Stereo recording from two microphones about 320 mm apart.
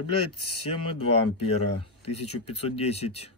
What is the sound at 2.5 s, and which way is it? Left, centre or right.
Speech, centre.